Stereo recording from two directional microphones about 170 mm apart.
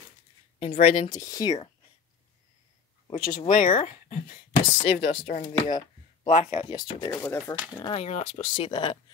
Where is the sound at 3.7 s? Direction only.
40° left (ahead or behind).